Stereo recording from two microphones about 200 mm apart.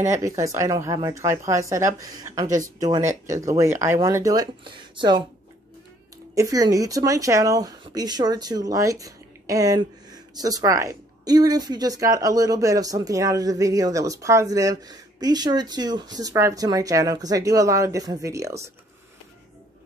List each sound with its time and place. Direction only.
0.1 s speech: 15° right (ahead or behind)
2.4 s speech: 40° right (ahead or behind)
2.8 s speech: 15° right (ahead or behind)
6.3 s speech: 15° right (ahead or behind)